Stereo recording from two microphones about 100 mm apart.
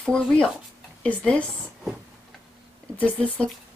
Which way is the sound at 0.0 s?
5° left (ahead or behind).